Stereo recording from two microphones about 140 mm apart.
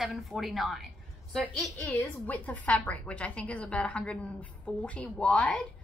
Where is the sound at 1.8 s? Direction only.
10° left (ahead or behind).